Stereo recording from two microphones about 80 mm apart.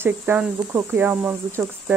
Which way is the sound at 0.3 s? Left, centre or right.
Right.